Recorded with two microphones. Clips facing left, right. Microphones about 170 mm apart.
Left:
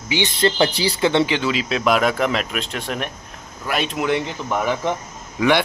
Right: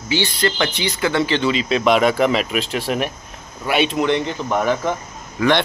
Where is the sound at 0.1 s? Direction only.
20° left (ahead or behind).